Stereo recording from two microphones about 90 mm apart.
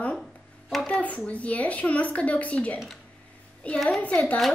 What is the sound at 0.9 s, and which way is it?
A woman's voice, 15° left (ahead or behind).